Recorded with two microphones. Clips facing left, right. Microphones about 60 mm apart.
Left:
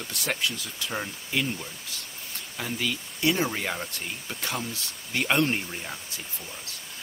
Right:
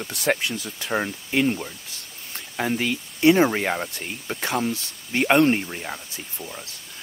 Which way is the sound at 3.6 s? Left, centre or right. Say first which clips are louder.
Right 6 dB; right.